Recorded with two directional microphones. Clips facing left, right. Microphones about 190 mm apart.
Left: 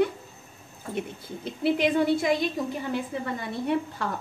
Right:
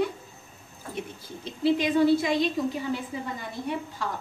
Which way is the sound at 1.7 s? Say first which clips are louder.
Right 2 dB; 60° left (ahead or behind).